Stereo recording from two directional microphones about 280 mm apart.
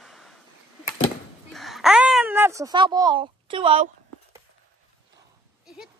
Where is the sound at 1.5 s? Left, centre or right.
Centre.